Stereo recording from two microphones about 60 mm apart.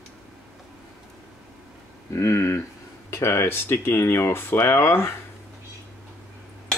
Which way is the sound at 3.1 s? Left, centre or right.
Left.